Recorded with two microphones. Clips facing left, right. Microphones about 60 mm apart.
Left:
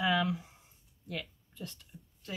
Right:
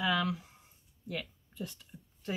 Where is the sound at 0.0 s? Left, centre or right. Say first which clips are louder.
Left 1 dB; centre.